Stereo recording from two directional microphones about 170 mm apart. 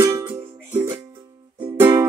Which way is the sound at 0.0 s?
25° right (ahead or behind).